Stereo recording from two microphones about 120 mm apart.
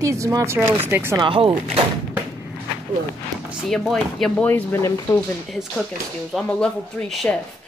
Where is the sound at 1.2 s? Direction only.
45° right (ahead or behind).